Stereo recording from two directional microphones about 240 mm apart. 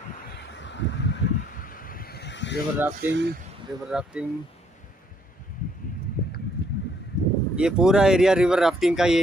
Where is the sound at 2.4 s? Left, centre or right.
Left.